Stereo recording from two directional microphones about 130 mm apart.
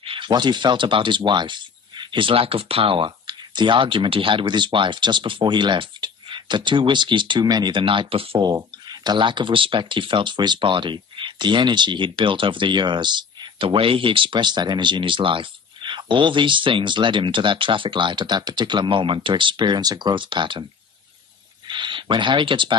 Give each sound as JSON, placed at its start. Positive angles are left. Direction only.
{"t": 0.0, "sound": "speech", "side_deg": -40}
{"t": 8.8, "sound": "speech", "side_deg": -35}
{"t": 21.6, "sound": "speech", "side_deg": -40}